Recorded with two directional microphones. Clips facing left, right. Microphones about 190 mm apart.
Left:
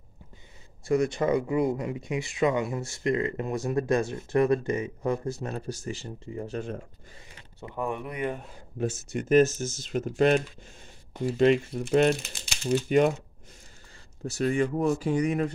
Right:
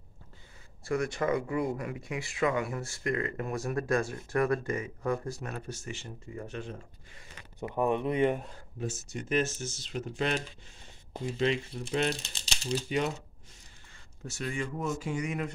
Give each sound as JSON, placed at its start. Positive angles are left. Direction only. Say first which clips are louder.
{"t": 0.8, "sound": "speech", "louder": "left 5 dB", "side_deg": 20}
{"t": 7.6, "sound": "speech", "louder": "right 4 dB", "side_deg": -20}
{"t": 8.7, "sound": "speech", "louder": "left 7 dB", "side_deg": 60}
{"t": 14.2, "sound": "speech", "louder": "left 10 dB", "side_deg": 40}